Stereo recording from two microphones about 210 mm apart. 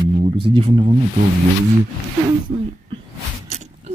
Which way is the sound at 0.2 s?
25° right (ahead or behind).